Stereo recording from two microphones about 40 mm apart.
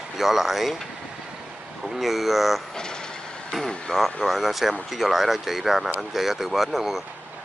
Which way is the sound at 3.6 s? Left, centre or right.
Centre.